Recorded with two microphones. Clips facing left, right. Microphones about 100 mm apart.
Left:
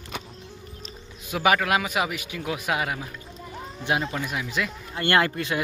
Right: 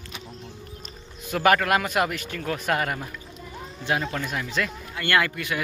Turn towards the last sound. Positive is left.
turn(degrees=30)  # may be behind; listen again after turning